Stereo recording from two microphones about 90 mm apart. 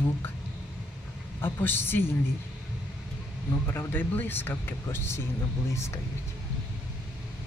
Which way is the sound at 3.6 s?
25° left (ahead or behind).